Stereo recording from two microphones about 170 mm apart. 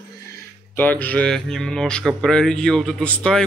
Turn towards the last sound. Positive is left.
turn(degrees=5)  # may be behind; listen again after turning